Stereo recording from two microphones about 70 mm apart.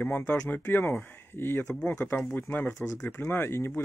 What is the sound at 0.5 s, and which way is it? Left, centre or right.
Speech, left.